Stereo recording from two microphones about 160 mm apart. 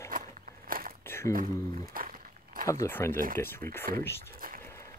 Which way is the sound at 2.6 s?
15° left (ahead or behind).